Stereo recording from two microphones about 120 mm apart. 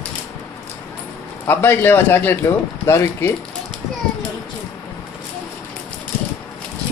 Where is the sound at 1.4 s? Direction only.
20° left (ahead or behind).